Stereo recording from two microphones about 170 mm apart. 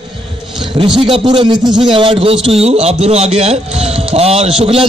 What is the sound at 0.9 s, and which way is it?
Speech, 30° right (ahead or behind).